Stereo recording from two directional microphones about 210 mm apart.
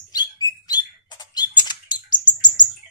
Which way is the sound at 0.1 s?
20° left (ahead or behind).